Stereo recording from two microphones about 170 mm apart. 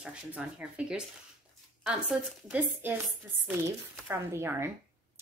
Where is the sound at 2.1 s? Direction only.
5° right (ahead or behind).